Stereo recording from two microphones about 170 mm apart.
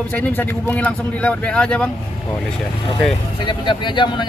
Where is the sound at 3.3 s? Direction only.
25° left (ahead or behind).